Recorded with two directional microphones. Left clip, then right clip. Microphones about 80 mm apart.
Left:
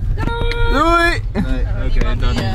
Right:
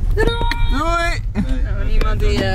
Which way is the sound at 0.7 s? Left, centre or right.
Centre.